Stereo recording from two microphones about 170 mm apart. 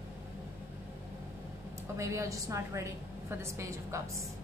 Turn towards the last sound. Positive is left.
turn(degrees=-15)  # may be behind; listen again after turning